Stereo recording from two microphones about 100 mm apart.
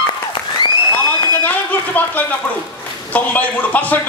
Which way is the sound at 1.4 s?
15° left (ahead or behind).